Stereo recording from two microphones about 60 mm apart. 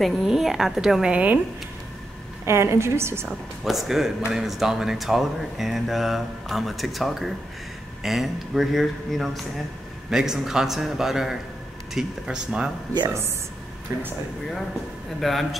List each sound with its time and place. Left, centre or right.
0.0 s speech: centre
1.1 s speech: right
2.4 s a woman's voice: right
3.6 s speech: centre
10.0 s a man's voice: centre
15.1 s speech: centre